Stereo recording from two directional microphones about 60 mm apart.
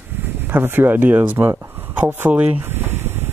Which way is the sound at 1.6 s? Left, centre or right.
Right.